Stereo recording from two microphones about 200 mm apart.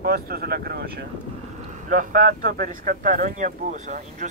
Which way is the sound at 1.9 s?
45° right (ahead or behind).